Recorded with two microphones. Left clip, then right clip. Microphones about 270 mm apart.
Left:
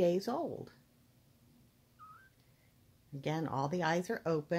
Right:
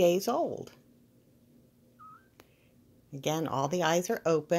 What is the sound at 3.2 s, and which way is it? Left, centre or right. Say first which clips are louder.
Speech: right 6 dB; centre.